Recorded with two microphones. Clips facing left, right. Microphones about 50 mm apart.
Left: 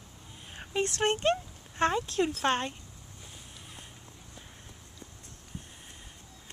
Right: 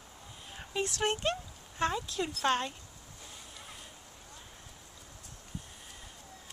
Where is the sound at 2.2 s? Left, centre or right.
Left.